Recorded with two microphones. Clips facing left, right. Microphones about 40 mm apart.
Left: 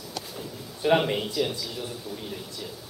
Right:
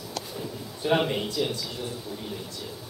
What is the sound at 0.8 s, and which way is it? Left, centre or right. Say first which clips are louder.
Speech: left 2 dB; centre.